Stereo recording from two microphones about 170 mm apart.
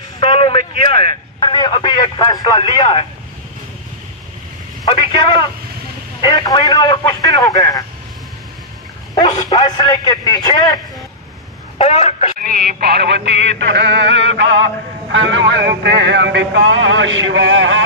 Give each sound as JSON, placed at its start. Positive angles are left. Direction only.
{"t": 0.2, "sound": "a man's voice", "side_deg": 30}
{"t": 4.8, "sound": "a man's voice", "side_deg": 30}
{"t": 9.1, "sound": "a man's voice", "side_deg": 25}
{"t": 11.8, "sound": "speech", "side_deg": 40}
{"t": 12.4, "sound": "a sound", "side_deg": -60}